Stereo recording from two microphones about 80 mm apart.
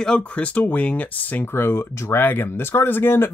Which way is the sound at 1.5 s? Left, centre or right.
Left.